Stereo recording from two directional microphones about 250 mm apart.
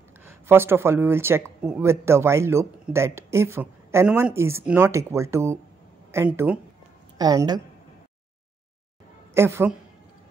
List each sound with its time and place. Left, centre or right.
0.2 s speech: centre
9.3 s a woman's voice: centre